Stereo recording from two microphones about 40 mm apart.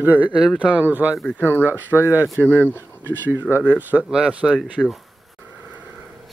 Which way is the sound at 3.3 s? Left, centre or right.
Right.